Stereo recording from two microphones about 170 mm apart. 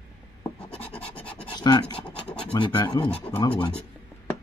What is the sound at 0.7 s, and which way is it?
Scratch, 35° left (ahead or behind).